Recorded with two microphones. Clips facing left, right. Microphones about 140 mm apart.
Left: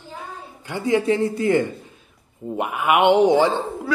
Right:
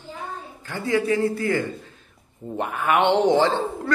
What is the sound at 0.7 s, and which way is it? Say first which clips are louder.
A woman's voice: left 3 dB; 20° left (ahead or behind).